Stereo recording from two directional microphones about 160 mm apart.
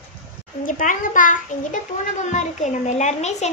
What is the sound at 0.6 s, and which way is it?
A child's voice, 55° left (ahead or behind).